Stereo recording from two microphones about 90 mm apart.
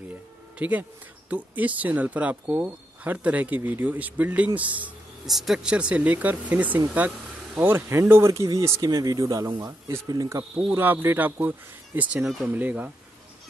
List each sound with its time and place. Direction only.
0.1 s a sound: 15° right (ahead or behind)
1.3 s speech: 15° right (ahead or behind)
5.2 s speech: 5° right (ahead or behind); by 8.8 s 35° right (ahead or behind)
8.8 s speech: 45° right (ahead or behind)
9.7 s speech: 35° right (ahead or behind)
10.7 s speech: 25° right (ahead or behind)